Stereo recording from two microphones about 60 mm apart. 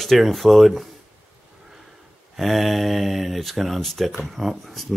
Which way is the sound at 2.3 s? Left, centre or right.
Centre.